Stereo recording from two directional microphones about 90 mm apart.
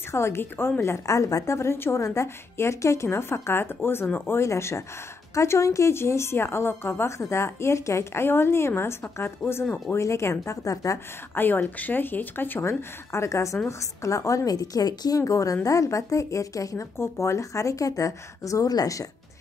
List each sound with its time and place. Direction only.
0.1 s a woman's voice: 30° left (ahead or behind)
11.3 s a woman's voice: 20° left (ahead or behind); by 19.0 s 40° left (ahead or behind)